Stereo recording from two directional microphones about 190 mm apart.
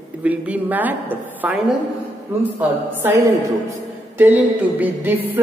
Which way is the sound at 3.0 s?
15° right (ahead or behind).